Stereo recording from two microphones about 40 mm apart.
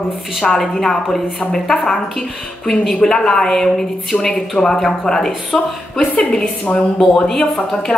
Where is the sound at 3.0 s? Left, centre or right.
Centre.